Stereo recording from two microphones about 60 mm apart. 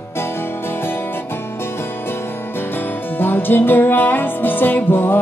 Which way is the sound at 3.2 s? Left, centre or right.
Left.